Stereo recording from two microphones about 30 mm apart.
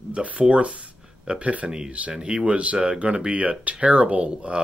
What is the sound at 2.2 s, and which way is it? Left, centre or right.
Speech, right.